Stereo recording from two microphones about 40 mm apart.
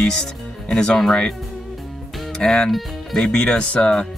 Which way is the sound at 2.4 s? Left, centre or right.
Centre.